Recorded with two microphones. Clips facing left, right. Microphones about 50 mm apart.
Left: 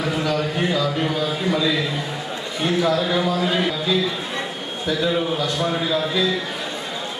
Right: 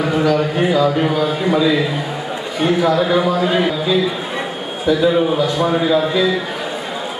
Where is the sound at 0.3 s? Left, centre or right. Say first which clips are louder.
Right 6 dB; centre.